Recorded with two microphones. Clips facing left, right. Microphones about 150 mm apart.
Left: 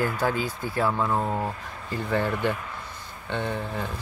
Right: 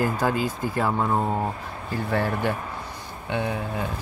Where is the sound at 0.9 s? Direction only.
25° right (ahead or behind).